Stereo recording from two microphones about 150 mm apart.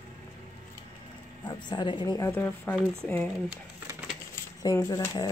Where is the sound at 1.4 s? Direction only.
30° left (ahead or behind); by 3.3 s 10° left (ahead or behind).